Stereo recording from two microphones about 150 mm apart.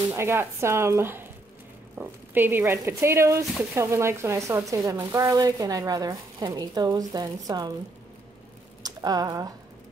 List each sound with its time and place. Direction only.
0.1 s speech: 15° right (ahead or behind)
8.8 s speech: 25° right (ahead or behind)